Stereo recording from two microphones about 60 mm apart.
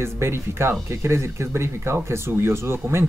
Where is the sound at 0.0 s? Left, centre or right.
Right.